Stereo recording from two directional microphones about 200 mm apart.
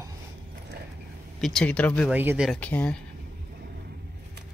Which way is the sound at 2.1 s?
5° right (ahead or behind).